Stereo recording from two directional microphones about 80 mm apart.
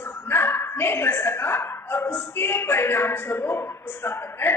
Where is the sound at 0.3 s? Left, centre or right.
Left.